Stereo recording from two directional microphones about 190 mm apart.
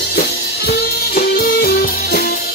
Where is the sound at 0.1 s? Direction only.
55° left (ahead or behind).